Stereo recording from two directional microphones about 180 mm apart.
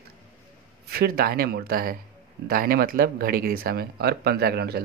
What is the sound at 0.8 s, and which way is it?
Speech, 60° right (ahead or behind).